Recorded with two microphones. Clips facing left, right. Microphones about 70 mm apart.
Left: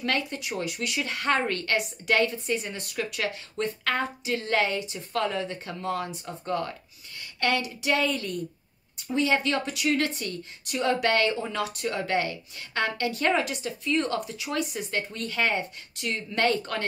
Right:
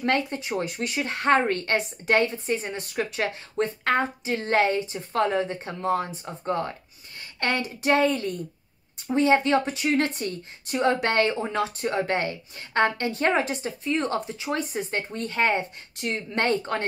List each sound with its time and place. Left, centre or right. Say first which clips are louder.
0.0 s speech: right 4 dB; right